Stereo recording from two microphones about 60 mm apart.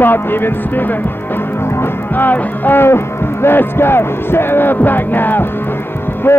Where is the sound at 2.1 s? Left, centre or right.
Left.